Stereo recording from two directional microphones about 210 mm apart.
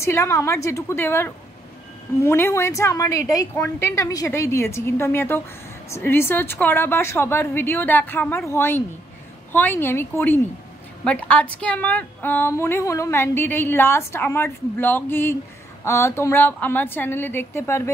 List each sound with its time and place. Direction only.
0.0 s a woman's voice: 10° left (ahead or behind)